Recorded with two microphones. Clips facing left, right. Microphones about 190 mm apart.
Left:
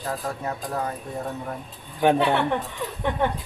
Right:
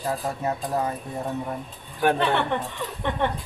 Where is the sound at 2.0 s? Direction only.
15° left (ahead or behind).